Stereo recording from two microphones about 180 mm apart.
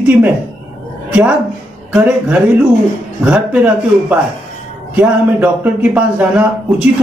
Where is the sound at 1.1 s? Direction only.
5° right (ahead or behind).